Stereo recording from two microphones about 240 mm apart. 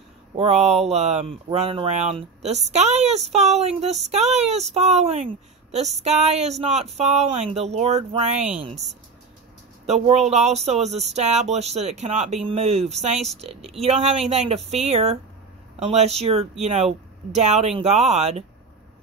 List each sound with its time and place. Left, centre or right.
0.4 s speech: right
9.8 s speech: right
13.6 s speech: centre
13.8 s speech: right